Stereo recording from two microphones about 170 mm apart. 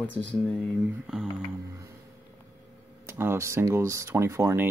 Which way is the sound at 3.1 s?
15° right (ahead or behind).